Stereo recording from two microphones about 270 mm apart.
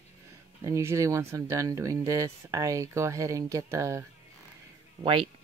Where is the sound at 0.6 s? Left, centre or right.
Centre.